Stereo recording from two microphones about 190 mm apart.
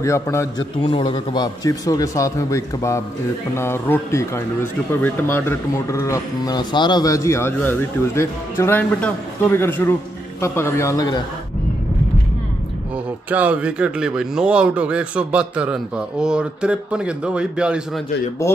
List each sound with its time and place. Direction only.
0.0 s speech: 15° left (ahead or behind)
0.7 s a man's voice: 25° left (ahead or behind)
12.9 s speech: 10° right (ahead or behind)
18.4 s speech: 15° left (ahead or behind)